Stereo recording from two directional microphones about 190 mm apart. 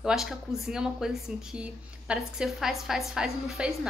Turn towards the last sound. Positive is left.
turn(degrees=0)  # may be behind; listen again after turning